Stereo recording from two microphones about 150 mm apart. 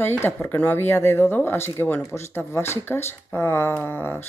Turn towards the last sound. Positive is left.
turn(degrees=15)  # may be behind; listen again after turning